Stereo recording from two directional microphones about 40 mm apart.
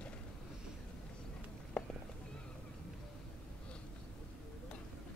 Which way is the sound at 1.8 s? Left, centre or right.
Left.